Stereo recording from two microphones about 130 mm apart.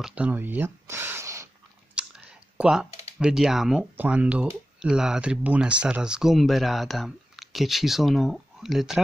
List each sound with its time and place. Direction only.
0.0 s speech: 10° right (ahead or behind)
2.0 s clicking: 10° right (ahead or behind)
3.2 s speech: 5° right (ahead or behind)